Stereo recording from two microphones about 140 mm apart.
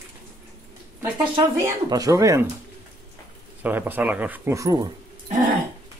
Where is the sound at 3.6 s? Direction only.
15° right (ahead or behind).